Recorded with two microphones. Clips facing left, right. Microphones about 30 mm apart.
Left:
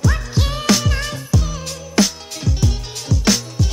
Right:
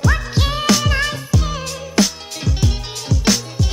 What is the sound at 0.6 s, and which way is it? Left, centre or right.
Music, centre.